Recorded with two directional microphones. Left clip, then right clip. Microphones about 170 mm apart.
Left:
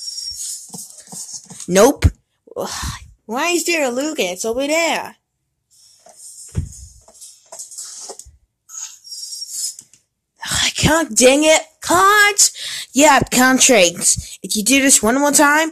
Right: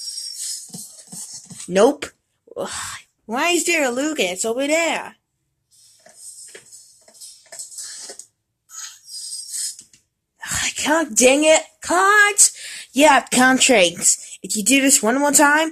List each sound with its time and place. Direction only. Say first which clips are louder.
1.7 s speech: left 3 dB; 40° left (ahead or behind)
2.0 s speech: left 6 dB; 20° left (ahead or behind)
10.4 s speech: left 5 dB; 20° left (ahead or behind)